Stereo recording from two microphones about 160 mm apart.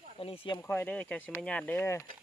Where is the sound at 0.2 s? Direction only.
35° left (ahead or behind).